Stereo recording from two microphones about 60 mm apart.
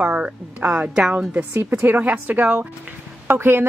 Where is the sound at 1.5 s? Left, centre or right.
Right.